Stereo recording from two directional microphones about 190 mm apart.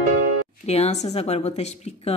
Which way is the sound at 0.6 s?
35° left (ahead or behind).